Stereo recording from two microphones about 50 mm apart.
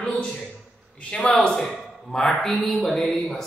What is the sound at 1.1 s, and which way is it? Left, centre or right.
Speech, left.